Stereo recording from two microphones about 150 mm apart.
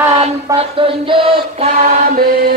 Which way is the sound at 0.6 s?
35° right (ahead or behind).